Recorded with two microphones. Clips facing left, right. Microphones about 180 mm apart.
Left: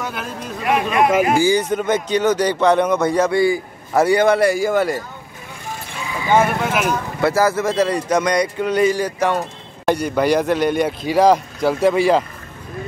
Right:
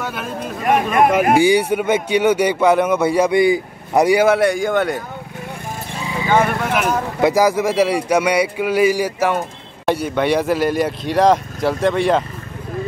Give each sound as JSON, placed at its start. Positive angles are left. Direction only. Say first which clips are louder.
{"t": 0.0, "sound": "speech", "louder": "right 1 dB", "side_deg": 0}
{"t": 0.7, "sound": "speech", "louder": "right 2 dB", "side_deg": -45}
{"t": 1.7, "sound": "speech", "louder": "right 1 dB", "side_deg": -10}
{"t": 6.3, "sound": "speech", "louder": "left 1 dB", "side_deg": 5}
{"t": 7.2, "sound": "speech", "louder": "right 2 dB", "side_deg": -15}